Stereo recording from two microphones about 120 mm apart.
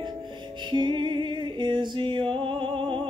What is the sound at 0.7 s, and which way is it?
Music, 40° right (ahead or behind).